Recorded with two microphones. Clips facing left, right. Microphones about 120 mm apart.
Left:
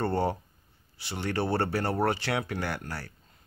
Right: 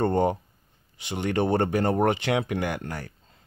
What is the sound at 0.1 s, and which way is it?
Speech, 20° right (ahead or behind).